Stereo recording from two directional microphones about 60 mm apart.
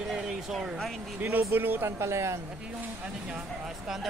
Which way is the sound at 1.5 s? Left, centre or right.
Right.